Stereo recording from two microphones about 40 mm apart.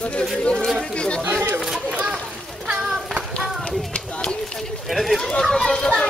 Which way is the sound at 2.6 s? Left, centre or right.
Right.